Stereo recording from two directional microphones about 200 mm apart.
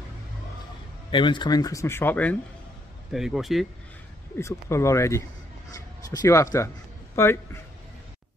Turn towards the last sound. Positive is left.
turn(degrees=10)  # may be behind; listen again after turning